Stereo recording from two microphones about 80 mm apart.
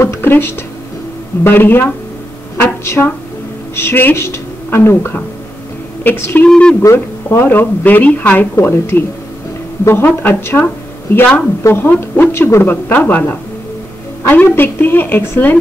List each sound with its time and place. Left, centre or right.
0.0 s a sound: left
1.4 s a woman's voice: left
6.5 s speech: centre
7.2 s speech: left
11.2 s speech: centre
11.6 s speech: left